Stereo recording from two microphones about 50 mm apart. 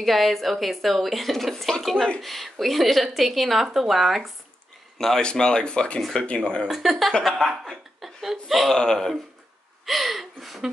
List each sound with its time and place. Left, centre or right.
0.0 s a woman's voice: centre
6.7 s a woman's voice: centre
8.7 s speech: centre
9.8 s a woman's voice: centre